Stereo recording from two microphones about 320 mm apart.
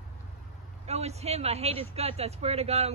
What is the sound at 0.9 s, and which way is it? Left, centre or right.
Speech, centre.